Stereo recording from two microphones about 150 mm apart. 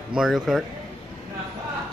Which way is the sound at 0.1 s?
5° right (ahead or behind).